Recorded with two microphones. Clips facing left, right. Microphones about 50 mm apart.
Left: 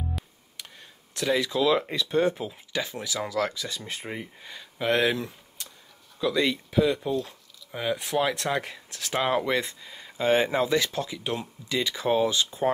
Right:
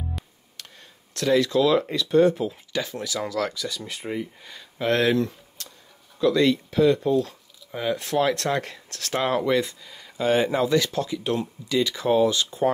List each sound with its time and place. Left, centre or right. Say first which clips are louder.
0.6 s speech: even; centre
2.4 s speech: right 4 dB; centre; by 4.3 s left
4.5 s speech: right 1 dB; centre
9.5 s speech: right 4 dB; left